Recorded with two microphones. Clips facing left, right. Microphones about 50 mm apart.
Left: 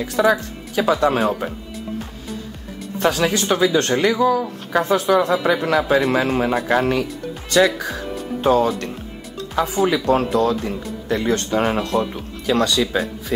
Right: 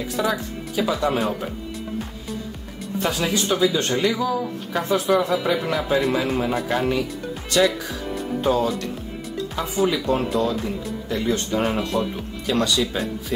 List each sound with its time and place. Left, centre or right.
0.0 s speech: left
3.0 s speech: left
8.4 s speech: left
9.6 s speech: left
11.1 s speech: left
12.4 s speech: left